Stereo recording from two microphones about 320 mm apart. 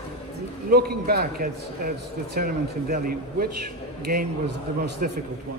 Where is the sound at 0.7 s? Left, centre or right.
Right.